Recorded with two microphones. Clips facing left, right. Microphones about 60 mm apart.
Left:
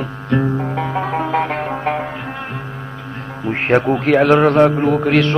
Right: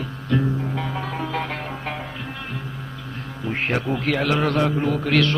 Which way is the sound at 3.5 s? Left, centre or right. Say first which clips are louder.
Left 9 dB; left.